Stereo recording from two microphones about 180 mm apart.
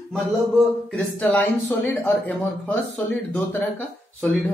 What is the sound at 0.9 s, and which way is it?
Speech, 10° left (ahead or behind).